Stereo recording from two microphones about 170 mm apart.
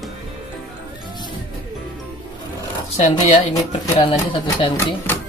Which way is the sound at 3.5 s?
20° left (ahead or behind).